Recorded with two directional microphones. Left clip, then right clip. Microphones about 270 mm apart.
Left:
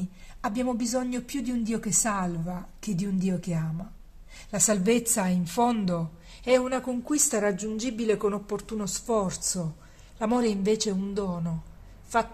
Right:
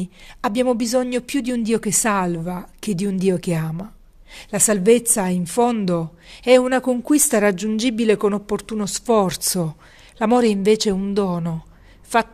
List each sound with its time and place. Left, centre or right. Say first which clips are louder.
0.4 s speech: right 10 dB; right